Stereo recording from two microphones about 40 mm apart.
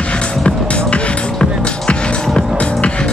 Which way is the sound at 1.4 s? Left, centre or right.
Left.